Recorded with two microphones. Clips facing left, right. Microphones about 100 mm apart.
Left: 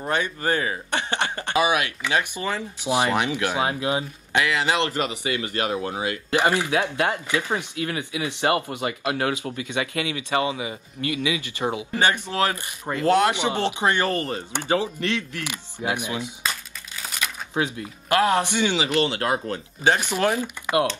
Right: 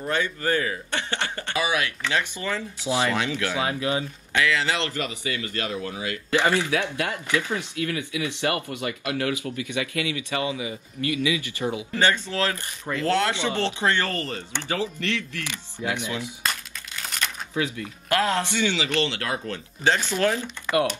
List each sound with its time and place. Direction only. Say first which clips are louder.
0.1 s speech: left 1 dB; 20° left (ahead or behind)
16.4 s crumpling: even; 5° left (ahead or behind)
17.6 s speech: left 2 dB; 25° left (ahead or behind)
19.1 s speech: left 5 dB; 30° left (ahead or behind)
19.8 s speech: left 1 dB; 15° left (ahead or behind)